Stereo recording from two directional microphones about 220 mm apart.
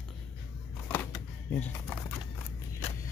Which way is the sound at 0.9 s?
10° left (ahead or behind).